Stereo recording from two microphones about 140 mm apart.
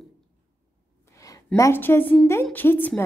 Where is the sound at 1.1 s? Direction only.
25° left (ahead or behind).